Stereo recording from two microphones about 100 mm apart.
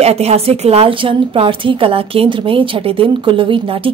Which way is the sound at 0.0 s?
90° right.